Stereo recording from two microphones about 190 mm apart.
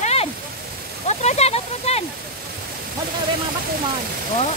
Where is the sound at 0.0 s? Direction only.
35° left (ahead or behind).